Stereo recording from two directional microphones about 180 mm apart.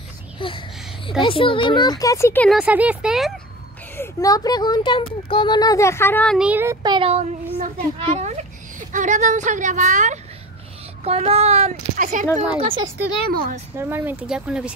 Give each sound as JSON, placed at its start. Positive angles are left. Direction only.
{"t": 0.4, "sound": "a sound", "side_deg": 30}
{"t": 1.2, "sound": "speech", "side_deg": 30}
{"t": 2.5, "sound": "speech", "side_deg": -5}
{"t": 3.9, "sound": "speech", "side_deg": 15}
{"t": 6.3, "sound": "a child's voice", "side_deg": -5}
{"t": 12.4, "sound": "a woman's voice", "side_deg": -30}
{"t": 13.7, "sound": "speech", "side_deg": -10}